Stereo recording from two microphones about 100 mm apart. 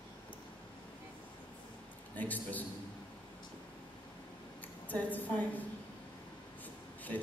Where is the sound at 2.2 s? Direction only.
15° left (ahead or behind).